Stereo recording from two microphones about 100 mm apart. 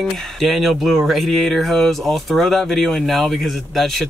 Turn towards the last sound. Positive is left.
turn(degrees=5)  # may be behind; listen again after turning